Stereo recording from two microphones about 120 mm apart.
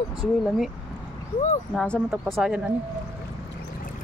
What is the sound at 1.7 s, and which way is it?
Speech, 5° left (ahead or behind).